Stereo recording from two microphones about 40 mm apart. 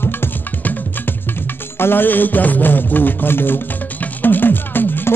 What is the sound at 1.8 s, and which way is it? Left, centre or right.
Music, left.